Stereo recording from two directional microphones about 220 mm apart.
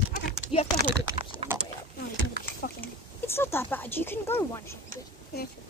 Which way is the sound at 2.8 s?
10° left (ahead or behind).